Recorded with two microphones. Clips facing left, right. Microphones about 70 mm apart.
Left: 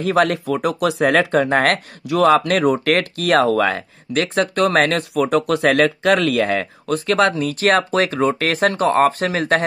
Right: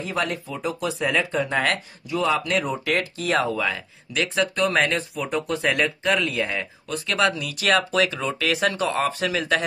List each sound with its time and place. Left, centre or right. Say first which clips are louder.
0.0 s speech: left 10 dB; left
1.4 s speech: left 7 dB; left